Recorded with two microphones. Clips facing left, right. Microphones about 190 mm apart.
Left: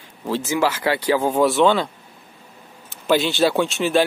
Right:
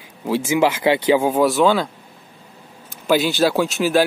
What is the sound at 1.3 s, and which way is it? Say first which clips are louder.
Speech: right 1 dB; centre (ahead or behind).